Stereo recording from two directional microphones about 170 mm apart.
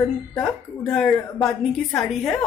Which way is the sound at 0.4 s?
Centre (ahead or behind).